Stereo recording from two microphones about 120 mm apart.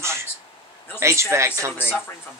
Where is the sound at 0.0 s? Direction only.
20° right (ahead or behind).